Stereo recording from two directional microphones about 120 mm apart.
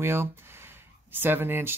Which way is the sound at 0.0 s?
20° right (ahead or behind).